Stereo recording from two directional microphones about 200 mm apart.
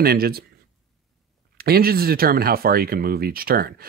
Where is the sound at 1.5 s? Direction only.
50° right (ahead or behind).